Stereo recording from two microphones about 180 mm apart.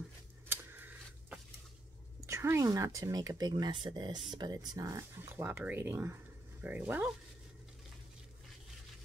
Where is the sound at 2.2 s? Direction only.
15° right (ahead or behind).